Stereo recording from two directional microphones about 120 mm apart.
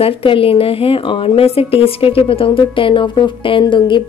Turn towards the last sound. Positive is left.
turn(degrees=40)  # may be behind; listen again after turning